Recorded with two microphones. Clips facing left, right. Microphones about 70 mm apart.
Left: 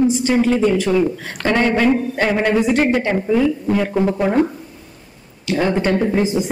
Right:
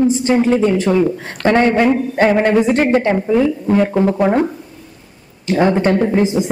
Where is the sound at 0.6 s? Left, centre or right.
Right.